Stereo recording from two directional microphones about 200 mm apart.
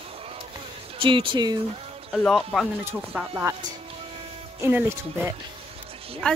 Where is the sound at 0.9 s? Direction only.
25° right (ahead or behind).